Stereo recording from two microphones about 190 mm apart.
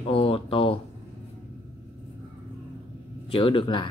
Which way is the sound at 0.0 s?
30° left (ahead or behind).